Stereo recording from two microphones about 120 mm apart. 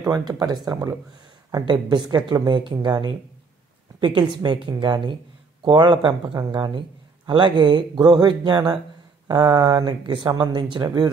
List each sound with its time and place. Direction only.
0.1 s a woman's voice: 30° right (ahead or behind)